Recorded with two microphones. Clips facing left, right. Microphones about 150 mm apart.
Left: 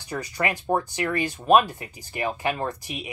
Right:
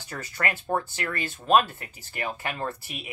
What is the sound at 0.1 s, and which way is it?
Speech, 15° left (ahead or behind).